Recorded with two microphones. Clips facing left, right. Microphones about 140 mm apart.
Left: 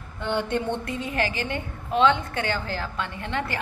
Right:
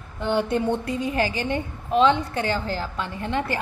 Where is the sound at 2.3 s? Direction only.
35° right (ahead or behind).